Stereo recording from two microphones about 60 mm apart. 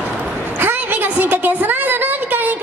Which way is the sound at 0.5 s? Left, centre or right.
Right.